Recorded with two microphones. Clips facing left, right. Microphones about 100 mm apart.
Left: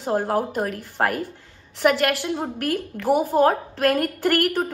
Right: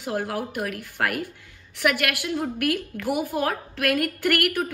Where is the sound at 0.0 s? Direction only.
40° left (ahead or behind).